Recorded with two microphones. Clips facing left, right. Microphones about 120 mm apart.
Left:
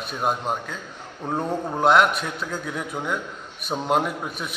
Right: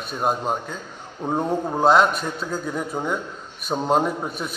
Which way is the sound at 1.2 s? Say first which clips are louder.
Right 3 dB; 10° right (ahead or behind).